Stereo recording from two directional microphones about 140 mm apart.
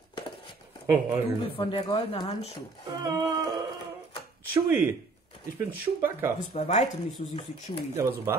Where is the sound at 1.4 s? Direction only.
40° left (ahead or behind).